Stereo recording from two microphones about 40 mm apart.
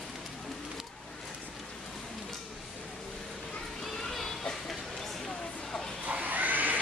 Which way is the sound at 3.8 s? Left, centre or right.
Centre.